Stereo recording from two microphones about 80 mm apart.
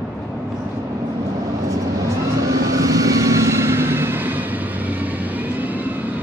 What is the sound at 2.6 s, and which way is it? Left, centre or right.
Vehicle, right.